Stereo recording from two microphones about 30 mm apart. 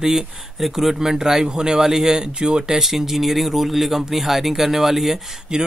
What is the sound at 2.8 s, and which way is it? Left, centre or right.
Speech, centre.